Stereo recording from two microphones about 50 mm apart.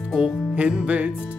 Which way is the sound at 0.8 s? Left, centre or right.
Right.